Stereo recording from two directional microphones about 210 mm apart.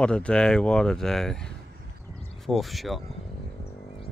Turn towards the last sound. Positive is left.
turn(degrees=0)  # may be behind; listen again after turning